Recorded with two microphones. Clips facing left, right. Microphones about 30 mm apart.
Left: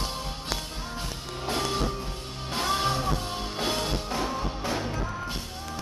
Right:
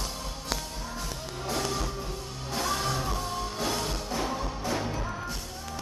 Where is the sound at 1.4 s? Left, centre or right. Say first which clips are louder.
Left 3 dB; left.